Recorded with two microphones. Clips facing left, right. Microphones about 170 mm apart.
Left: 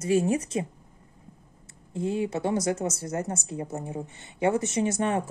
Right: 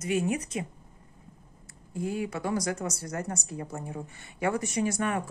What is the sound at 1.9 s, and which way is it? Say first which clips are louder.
A woman's voice: left 4 dB; 25° left (ahead or behind).